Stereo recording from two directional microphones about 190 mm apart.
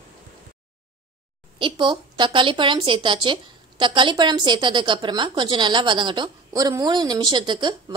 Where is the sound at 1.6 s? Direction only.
25° right (ahead or behind).